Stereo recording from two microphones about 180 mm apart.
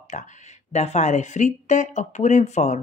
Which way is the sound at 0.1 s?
40° left (ahead or behind).